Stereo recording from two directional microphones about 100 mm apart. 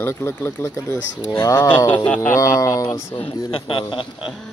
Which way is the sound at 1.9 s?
15° left (ahead or behind).